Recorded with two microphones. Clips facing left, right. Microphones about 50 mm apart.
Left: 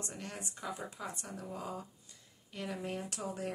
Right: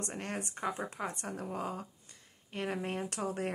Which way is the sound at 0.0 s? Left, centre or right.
Right.